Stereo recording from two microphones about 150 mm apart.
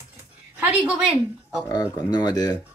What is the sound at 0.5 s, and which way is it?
Speech, 10° right (ahead or behind).